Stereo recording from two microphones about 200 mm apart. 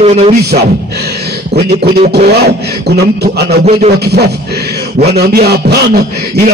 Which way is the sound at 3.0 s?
55° right (ahead or behind).